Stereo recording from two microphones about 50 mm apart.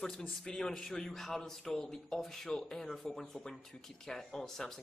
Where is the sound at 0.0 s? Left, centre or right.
Centre.